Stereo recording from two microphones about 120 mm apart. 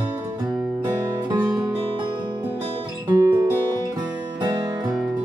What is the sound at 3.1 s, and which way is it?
Music, 30° right (ahead or behind).